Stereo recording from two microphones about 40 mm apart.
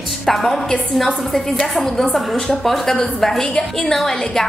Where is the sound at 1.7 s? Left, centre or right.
Centre.